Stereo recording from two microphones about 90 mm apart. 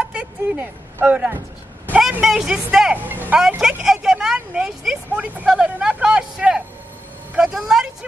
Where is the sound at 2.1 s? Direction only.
10° right (ahead or behind).